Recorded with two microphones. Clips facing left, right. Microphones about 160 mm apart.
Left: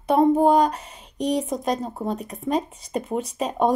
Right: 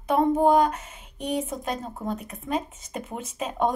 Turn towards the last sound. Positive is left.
turn(degrees=35)  # may be behind; listen again after turning